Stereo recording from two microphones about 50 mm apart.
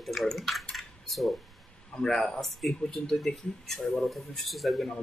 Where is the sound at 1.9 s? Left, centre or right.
Centre.